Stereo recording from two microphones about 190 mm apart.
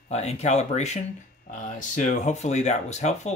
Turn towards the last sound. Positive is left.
turn(degrees=35)  # may be behind; listen again after turning